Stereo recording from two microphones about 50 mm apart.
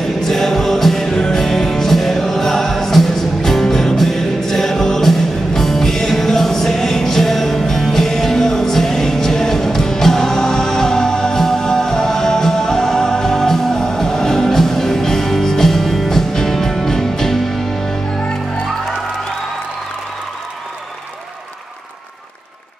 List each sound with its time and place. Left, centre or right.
0.0 s music: centre
18.2 s music: left